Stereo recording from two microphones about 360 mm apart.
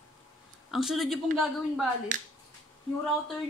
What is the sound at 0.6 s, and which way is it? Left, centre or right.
A woman's voice, centre.